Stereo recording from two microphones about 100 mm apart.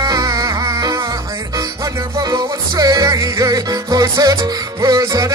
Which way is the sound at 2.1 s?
35° right (ahead or behind).